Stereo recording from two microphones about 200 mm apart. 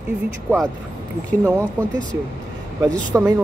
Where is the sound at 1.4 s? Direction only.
10° right (ahead or behind).